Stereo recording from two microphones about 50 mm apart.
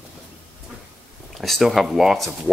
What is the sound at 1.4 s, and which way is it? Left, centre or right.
Speech, centre.